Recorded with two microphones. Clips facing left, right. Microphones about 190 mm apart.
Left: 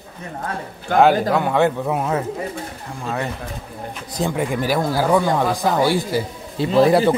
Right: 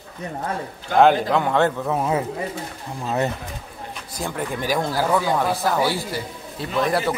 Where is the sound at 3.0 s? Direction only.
20° right (ahead or behind).